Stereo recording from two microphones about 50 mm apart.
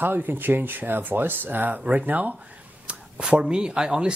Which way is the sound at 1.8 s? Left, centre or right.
Right.